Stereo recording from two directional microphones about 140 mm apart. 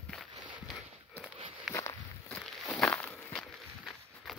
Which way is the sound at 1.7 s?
20° left (ahead or behind).